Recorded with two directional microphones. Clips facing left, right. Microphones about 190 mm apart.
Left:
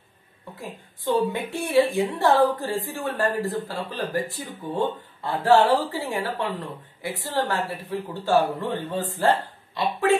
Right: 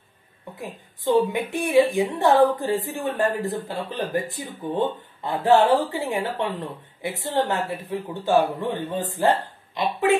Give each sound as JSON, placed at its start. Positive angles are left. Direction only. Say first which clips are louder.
{"t": 0.6, "sound": "a woman's voice", "louder": "right 2 dB", "side_deg": -15}